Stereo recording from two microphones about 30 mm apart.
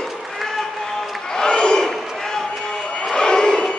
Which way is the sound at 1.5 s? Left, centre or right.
Left.